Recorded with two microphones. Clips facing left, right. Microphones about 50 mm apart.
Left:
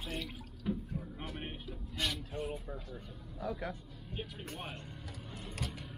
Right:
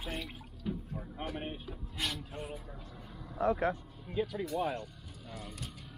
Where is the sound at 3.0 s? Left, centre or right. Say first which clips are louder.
Right 3 dB; right.